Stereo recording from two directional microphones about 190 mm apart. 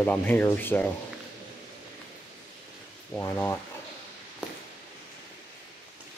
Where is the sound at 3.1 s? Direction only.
10° left (ahead or behind).